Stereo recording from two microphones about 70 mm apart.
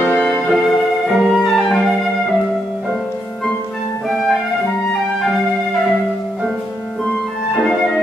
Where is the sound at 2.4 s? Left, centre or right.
Centre.